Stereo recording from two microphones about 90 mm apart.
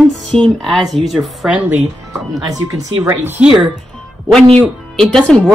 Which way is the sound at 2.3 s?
40° right (ahead or behind).